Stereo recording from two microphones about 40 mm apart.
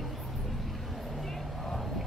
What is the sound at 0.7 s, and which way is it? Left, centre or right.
Vehicle, centre.